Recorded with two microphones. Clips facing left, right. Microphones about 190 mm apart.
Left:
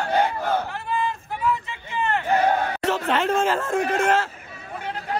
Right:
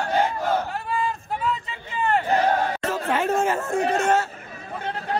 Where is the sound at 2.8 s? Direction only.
75° left (ahead or behind); by 4.2 s 90° left.